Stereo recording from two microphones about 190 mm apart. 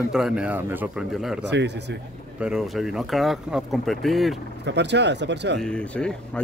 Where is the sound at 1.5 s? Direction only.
65° right (ahead or behind).